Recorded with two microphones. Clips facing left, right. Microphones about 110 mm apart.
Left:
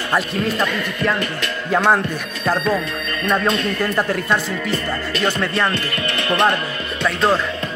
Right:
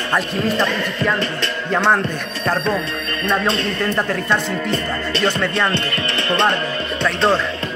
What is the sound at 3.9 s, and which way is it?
Speech, 5° left (ahead or behind).